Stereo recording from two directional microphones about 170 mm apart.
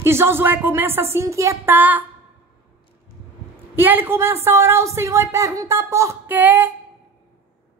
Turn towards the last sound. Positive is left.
turn(degrees=-10)  # may be behind; listen again after turning